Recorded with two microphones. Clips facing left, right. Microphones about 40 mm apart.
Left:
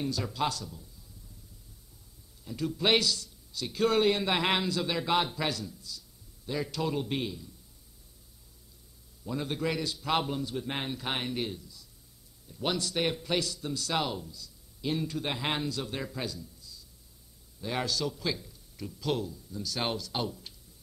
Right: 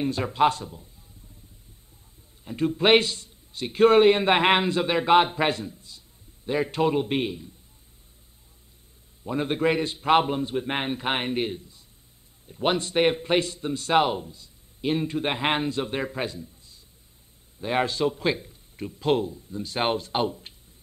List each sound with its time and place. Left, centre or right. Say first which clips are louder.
0.0 s a man's voice: right 9 dB; right
2.4 s a man's voice: right 7 dB; right
9.2 s a man's voice: right 8 dB; right